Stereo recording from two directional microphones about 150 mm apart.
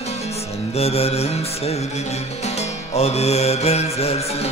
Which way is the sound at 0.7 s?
40° left (ahead or behind).